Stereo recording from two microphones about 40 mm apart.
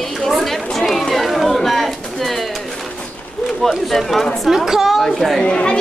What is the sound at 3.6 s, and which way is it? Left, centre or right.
Speech, centre.